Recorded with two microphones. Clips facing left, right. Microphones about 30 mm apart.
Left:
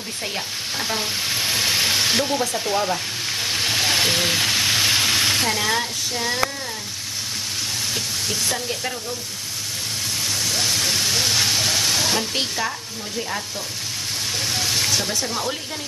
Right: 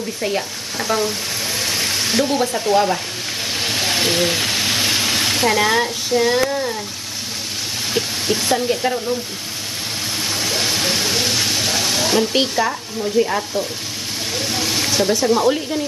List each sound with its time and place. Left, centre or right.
0.2 s stir: centre
1.0 s a sound: centre
2.7 s stir: centre
3.5 s a sound: centre
5.5 s speech: centre
7.9 s speech: centre
10.4 s speech: right